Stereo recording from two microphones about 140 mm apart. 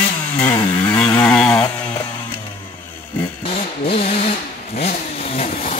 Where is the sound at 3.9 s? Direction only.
45° left (ahead or behind).